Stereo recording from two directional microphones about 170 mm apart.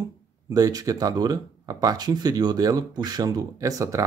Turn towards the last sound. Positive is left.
turn(degrees=-20)  # may be behind; listen again after turning